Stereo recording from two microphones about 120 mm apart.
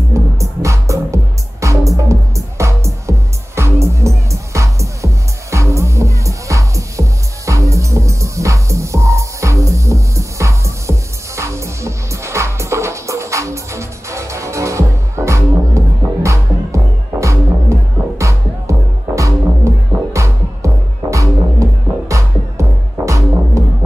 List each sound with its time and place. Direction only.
0.1 s music: 25° right (ahead or behind)